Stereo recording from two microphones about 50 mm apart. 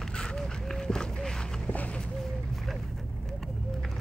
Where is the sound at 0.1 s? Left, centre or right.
Centre.